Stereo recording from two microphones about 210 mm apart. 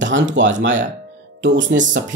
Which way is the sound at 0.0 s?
60° right (ahead or behind).